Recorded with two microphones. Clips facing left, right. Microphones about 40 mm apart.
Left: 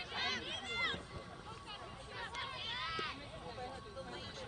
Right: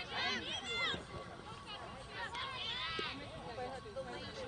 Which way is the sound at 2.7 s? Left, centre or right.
Right.